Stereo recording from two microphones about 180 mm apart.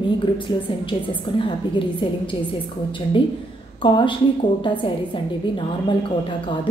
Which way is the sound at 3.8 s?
25° left (ahead or behind).